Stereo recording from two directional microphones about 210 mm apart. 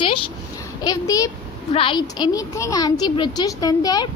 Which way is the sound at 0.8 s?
15° left (ahead or behind).